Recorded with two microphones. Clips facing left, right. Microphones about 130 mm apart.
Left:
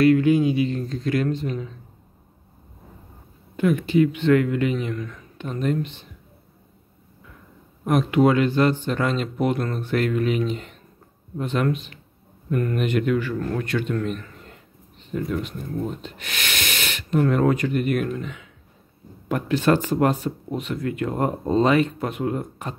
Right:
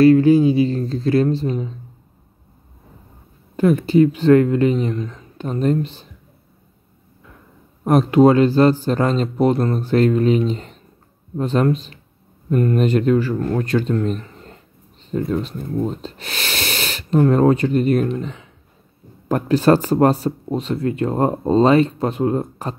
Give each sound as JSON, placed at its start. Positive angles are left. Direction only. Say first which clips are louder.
{"t": 0.0, "sound": "speech", "louder": "right 5 dB", "side_deg": -35}
{"t": 3.5, "sound": "speech", "louder": "right 5 dB", "side_deg": -35}
{"t": 5.4, "sound": "speech", "louder": "right 5 dB", "side_deg": -35}
{"t": 7.8, "sound": "speech", "louder": "right 6 dB", "side_deg": -35}